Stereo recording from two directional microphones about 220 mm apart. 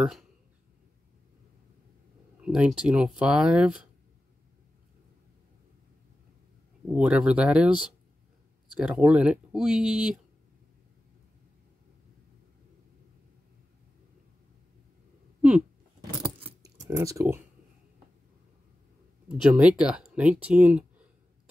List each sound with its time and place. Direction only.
2.4 s speech: 5° right (ahead or behind)
6.9 s speech: 5° right (ahead or behind)
16.0 s keys jangling: 15° right (ahead or behind)
19.4 s speech: 5° right (ahead or behind)